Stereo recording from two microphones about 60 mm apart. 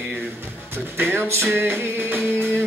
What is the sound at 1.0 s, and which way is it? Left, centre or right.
Music, right.